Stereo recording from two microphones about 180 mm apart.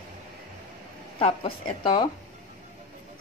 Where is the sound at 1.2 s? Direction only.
30° left (ahead or behind).